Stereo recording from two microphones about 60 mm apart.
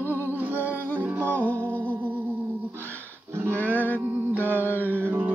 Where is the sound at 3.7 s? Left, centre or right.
Left.